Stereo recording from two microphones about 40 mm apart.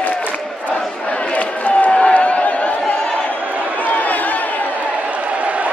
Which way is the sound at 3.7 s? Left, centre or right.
Left.